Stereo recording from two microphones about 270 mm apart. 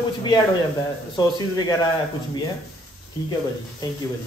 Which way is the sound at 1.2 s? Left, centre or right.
Centre.